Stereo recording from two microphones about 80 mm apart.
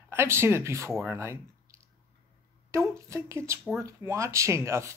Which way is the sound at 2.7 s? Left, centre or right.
Right.